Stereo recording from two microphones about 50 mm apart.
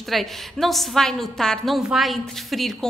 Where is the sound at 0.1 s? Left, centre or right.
Centre.